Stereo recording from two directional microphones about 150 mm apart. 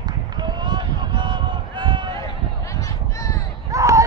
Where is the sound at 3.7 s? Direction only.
20° right (ahead or behind).